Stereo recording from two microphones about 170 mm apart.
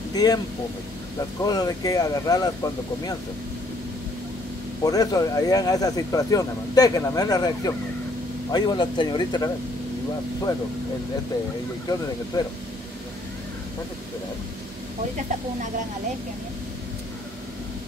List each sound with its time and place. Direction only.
0.1 s speech: 20° left (ahead or behind)
1.4 s speech: 25° left (ahead or behind)
4.8 s speech: 20° left (ahead or behind)
12.3 s speech: 20° left (ahead or behind)